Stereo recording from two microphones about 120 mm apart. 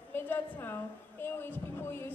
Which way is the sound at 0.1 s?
15° left (ahead or behind).